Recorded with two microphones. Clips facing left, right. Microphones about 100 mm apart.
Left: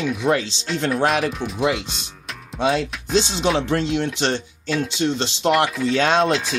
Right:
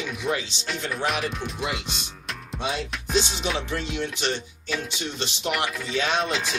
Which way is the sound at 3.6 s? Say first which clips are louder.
Left 8 dB; 75° left (ahead or behind).